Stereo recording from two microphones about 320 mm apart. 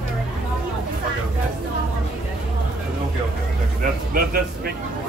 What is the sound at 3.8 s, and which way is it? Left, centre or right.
Music, right.